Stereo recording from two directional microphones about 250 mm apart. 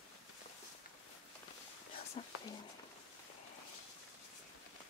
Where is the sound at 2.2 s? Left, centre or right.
Left.